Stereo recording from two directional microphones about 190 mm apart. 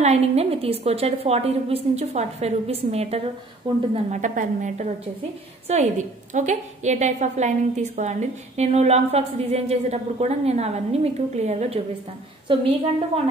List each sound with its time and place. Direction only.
0.0 s a woman's voice: 35° right (ahead or behind)